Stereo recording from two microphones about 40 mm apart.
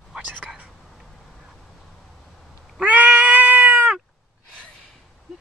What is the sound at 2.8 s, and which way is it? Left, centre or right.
Cat, right.